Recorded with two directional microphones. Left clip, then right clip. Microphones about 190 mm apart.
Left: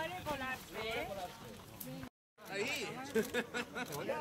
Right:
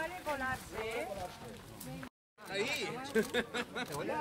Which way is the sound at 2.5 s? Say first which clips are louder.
Right 3 dB; 20° right (ahead or behind).